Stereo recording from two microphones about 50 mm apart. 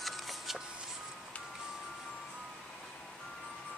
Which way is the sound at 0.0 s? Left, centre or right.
Centre.